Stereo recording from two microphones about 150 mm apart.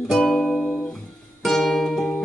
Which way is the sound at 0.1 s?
5° left (ahead or behind).